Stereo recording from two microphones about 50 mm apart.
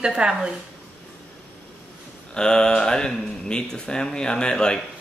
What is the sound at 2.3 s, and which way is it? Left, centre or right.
Speech, centre.